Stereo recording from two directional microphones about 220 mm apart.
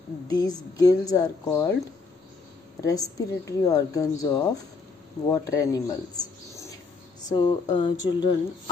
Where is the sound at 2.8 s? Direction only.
15° left (ahead or behind).